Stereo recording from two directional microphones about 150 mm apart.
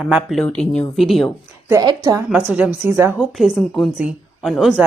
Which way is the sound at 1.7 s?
25° right (ahead or behind).